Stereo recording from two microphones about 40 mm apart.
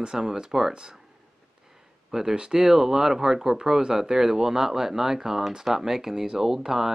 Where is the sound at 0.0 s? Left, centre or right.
Centre.